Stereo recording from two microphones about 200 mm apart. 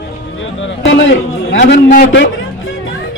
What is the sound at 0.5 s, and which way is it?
A man's voice, 65° left (ahead or behind).